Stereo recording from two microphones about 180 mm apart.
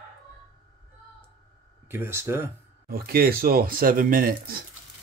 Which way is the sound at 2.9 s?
55° right (ahead or behind).